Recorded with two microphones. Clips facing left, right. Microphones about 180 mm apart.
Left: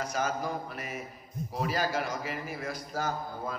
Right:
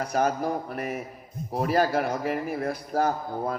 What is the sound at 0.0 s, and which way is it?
A man's voice, 55° right (ahead or behind).